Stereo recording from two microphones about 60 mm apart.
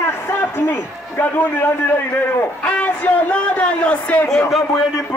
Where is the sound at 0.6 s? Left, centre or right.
Left.